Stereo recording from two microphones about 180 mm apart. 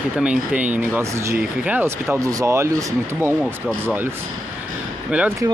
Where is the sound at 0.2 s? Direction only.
5° right (ahead or behind).